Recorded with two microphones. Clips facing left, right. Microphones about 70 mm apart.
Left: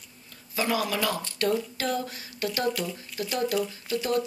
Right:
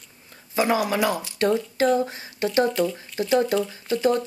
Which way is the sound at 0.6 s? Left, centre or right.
Right.